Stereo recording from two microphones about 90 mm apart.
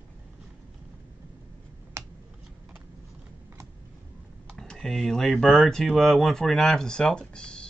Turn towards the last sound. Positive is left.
turn(degrees=10)  # may be behind; listen again after turning